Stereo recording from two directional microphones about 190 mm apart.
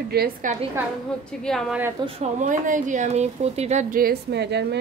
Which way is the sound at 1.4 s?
Centre (ahead or behind).